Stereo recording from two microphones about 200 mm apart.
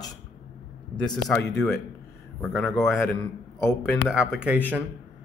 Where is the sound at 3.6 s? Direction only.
15° left (ahead or behind).